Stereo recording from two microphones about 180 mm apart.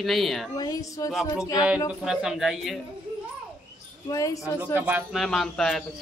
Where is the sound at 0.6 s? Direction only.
20° left (ahead or behind).